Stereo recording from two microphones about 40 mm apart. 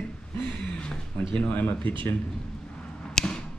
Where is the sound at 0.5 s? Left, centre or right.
Left.